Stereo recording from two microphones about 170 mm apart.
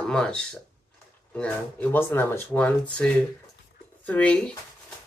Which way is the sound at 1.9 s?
15° left (ahead or behind).